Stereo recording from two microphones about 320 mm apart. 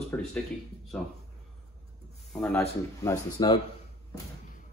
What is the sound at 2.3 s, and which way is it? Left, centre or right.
Speech, centre.